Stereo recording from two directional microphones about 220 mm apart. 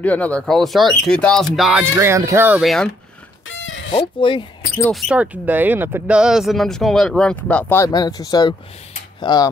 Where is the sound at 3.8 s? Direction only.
20° left (ahead or behind).